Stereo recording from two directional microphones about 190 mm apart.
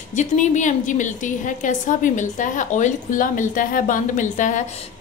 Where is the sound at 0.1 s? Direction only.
40° left (ahead or behind).